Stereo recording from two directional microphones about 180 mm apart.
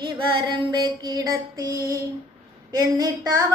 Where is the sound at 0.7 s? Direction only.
25° right (ahead or behind).